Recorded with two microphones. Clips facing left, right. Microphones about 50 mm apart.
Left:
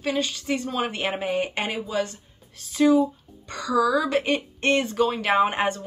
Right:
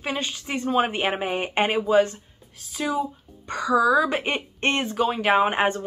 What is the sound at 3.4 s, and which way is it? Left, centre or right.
Speech, right.